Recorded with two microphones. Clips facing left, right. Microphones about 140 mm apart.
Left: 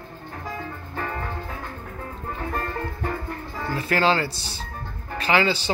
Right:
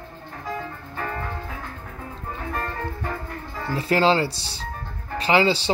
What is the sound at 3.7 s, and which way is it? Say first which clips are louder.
Speech: right 2 dB; 25° right (ahead or behind).